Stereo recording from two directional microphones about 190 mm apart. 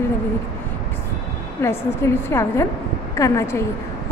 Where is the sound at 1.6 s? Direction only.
15° left (ahead or behind).